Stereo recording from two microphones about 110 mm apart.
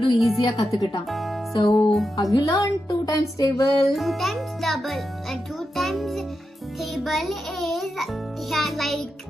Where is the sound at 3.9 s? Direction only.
Centre (ahead or behind).